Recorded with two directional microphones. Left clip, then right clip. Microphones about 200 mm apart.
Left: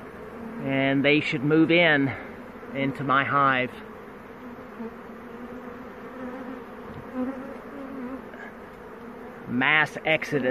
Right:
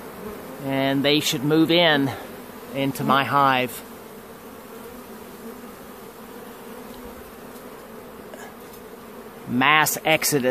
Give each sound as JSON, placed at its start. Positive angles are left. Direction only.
{"t": 0.7, "sound": "speech", "side_deg": -10}
{"t": 9.6, "sound": "speech", "side_deg": -30}